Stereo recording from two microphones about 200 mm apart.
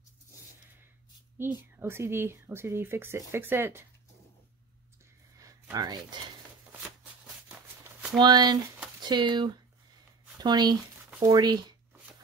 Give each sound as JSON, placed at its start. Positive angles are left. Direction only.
{"t": 1.4, "sound": "speech", "side_deg": -10}
{"t": 5.4, "sound": "a sound", "side_deg": -20}
{"t": 7.4, "sound": "shuffle", "side_deg": -5}
{"t": 8.2, "sound": "speech", "side_deg": -20}